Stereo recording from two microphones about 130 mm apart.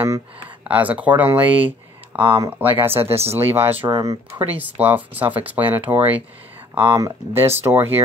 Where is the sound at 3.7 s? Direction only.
35° right (ahead or behind).